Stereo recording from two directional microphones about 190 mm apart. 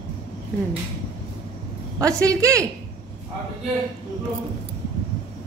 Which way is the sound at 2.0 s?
15° right (ahead or behind).